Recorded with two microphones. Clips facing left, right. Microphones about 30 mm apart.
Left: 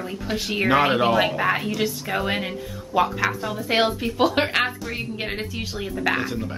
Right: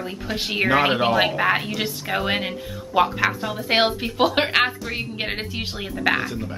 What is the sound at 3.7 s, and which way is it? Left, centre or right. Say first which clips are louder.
Speech: right 1 dB; right.